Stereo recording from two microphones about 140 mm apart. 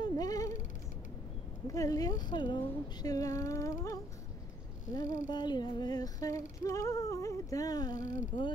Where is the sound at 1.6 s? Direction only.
25° left (ahead or behind).